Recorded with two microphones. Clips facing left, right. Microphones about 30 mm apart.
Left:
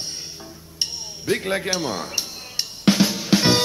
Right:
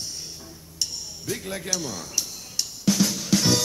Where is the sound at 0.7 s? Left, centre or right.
Left.